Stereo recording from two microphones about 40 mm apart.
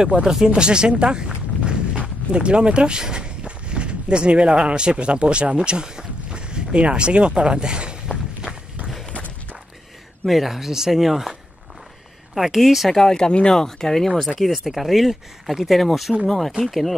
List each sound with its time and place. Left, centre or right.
0.0 s speech: centre
9.1 s walk: left
10.2 s speech: centre
12.4 s speech: centre
13.0 s speech: centre
14.4 s speech: centre